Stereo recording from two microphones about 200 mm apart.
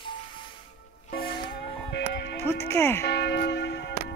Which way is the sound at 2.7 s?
10° left (ahead or behind).